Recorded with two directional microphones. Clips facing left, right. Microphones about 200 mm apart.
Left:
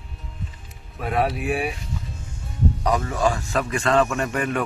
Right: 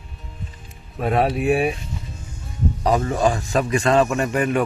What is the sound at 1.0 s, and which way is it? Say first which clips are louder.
Speech: right 4 dB; 25° right (ahead or behind).